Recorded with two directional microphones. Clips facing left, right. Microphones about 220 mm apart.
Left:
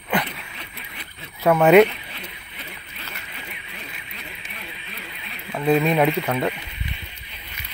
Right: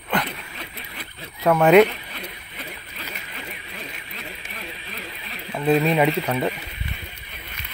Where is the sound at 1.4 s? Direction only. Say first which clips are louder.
Left 1 dB; centre (ahead or behind).